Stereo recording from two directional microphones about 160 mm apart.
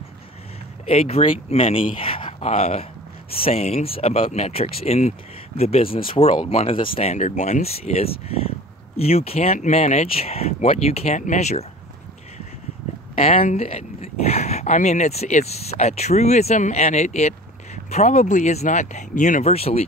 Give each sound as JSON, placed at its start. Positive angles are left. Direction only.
{"t": 0.8, "sound": "speech", "side_deg": 40}
{"t": 13.2, "sound": "speech", "side_deg": 40}